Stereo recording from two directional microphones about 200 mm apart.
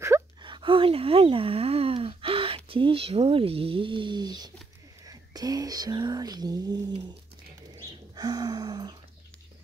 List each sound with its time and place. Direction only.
0.4 s speech: 25° right (ahead or behind)
5.0 s whispering: 20° right (ahead or behind)
8.2 s gasp: 20° right (ahead or behind)